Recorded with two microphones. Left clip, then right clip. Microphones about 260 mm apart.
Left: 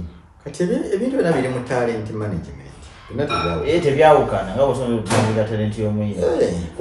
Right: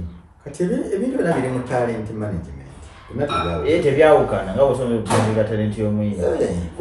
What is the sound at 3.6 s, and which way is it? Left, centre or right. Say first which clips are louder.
A man's voice: left 1 dB; centre.